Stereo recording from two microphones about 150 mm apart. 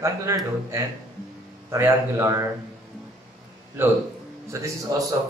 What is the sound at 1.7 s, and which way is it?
Speech, 20° right (ahead or behind).